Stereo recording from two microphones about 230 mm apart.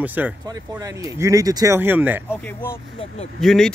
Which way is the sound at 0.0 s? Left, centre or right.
Centre.